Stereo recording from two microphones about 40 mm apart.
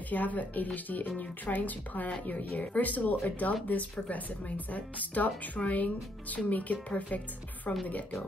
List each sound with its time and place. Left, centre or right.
0.1 s a woman's voice: left